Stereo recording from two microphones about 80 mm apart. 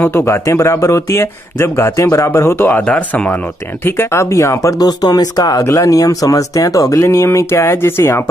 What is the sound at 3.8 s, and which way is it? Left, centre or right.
Speech, left.